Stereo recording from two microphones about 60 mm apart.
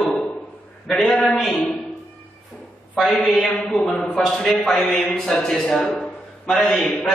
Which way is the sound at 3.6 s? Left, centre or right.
Centre.